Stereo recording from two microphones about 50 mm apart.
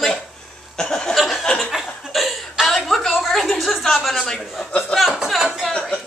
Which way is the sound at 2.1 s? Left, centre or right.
Centre.